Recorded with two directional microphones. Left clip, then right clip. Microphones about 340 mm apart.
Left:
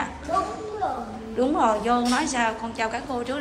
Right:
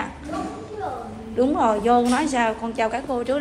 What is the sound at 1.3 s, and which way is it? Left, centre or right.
A woman's voice, centre.